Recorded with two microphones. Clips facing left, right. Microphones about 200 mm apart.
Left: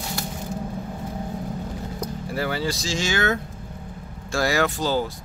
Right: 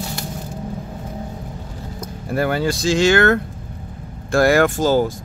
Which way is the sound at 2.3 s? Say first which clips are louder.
Right 7 dB; 55° right (ahead or behind).